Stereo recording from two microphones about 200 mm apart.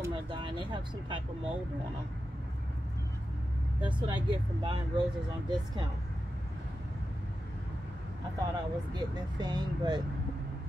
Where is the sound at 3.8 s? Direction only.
25° right (ahead or behind).